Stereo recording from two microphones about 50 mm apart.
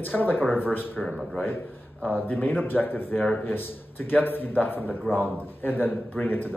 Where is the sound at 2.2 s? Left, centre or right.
Left.